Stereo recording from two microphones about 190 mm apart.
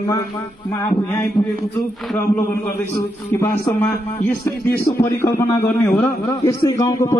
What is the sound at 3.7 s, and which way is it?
A man's voice, 10° left (ahead or behind).